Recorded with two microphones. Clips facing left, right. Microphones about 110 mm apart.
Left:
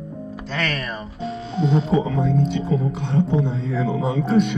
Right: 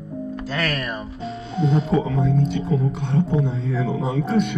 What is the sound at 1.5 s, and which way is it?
Speech, 30° left (ahead or behind).